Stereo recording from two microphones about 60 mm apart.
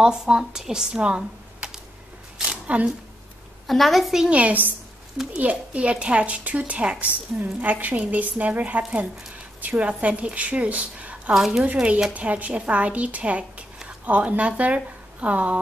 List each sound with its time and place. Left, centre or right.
0.0 s speech: centre
2.3 s a sound: centre
3.6 s a woman's voice: centre
4.3 s a woman's voice: right
11.3 s a woman's voice: centre
11.6 s speech: right